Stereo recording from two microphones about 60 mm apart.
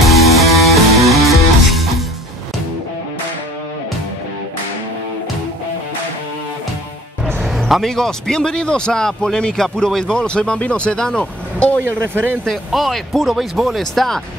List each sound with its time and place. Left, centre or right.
0.0 s music: centre
7.4 s a man's voice: centre
11.8 s speech: right
12.4 s speech: centre